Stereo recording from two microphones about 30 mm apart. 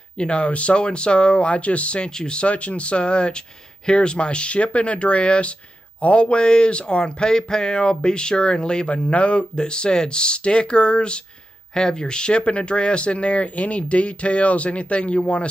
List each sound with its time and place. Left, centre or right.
0.2 s speech: left
2.2 s speech: left
2.5 s speech: left
8.9 s speech: left
9.6 s speech: left
11.7 s speech: left